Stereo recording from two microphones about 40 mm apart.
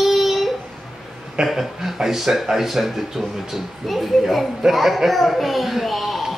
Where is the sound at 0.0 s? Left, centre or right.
Centre.